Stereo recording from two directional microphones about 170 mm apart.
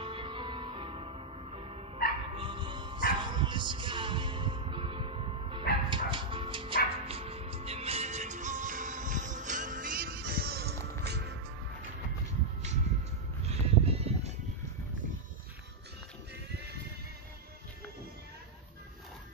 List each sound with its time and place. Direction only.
0.0 s music: 30° right (ahead or behind); by 11.3 s 80° right
13.5 s music: 40° right (ahead or behind)